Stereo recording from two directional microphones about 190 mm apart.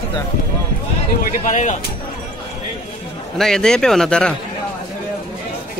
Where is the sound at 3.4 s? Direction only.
5° left (ahead or behind).